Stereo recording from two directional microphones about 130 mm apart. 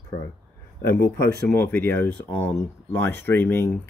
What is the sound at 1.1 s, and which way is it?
Speech, 15° left (ahead or behind).